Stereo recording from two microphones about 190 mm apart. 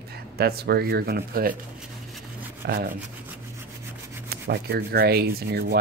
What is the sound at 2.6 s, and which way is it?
Speech, 50° right (ahead or behind).